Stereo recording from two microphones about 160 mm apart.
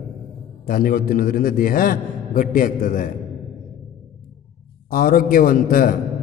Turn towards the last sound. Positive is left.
turn(degrees=60)  # may be behind; listen again after turning